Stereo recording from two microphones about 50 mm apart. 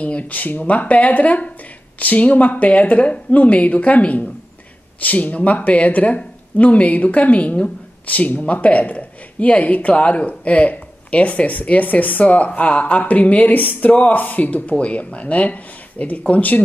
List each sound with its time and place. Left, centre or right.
0.0 s speech: left